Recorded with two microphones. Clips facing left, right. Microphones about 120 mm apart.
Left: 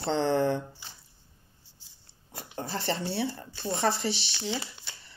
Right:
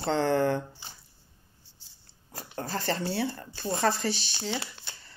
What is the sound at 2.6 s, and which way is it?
Speech, 25° left (ahead or behind).